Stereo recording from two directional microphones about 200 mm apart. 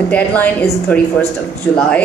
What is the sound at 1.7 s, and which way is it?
Speech, 5° left (ahead or behind).